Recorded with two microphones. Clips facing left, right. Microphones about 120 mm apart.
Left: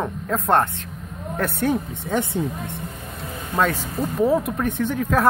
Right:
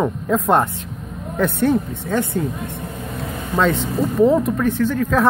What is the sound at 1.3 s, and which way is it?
Speech, 5° left (ahead or behind).